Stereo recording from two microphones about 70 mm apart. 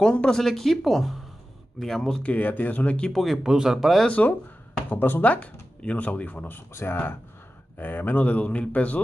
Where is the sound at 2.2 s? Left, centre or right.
Left.